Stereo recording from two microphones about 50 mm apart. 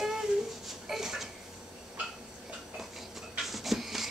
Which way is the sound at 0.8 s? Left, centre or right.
Centre.